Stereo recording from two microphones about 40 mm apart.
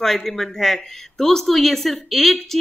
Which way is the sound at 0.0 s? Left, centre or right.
Centre.